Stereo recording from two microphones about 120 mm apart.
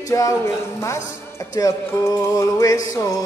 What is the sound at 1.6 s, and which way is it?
Music, 30° left (ahead or behind).